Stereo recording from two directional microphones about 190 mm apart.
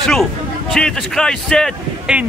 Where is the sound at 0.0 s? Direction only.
Centre (ahead or behind).